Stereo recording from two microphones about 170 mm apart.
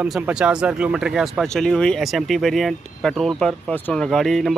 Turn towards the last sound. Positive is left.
turn(degrees=0)  # may be behind; listen again after turning